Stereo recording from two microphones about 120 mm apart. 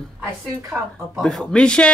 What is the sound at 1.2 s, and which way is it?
Speech, 5° left (ahead or behind).